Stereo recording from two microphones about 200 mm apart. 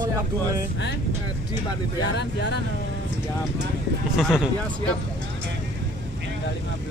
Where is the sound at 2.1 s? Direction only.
60° left (ahead or behind).